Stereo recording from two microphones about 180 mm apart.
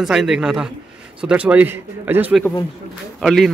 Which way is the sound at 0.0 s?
5° right (ahead or behind).